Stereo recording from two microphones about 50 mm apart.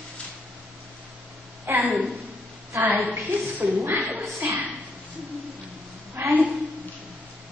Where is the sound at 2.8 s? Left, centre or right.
Right.